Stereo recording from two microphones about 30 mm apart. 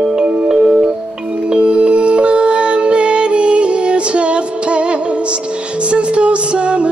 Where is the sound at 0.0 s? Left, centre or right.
Right.